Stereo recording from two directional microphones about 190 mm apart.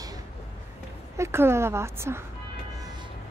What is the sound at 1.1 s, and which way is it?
A woman's voice, 15° right (ahead or behind).